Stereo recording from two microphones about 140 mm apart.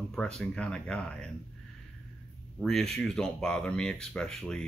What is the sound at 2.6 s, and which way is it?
Speech, 5° left (ahead or behind).